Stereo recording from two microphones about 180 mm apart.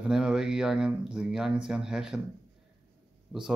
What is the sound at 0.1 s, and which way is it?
Speech, 5° right (ahead or behind).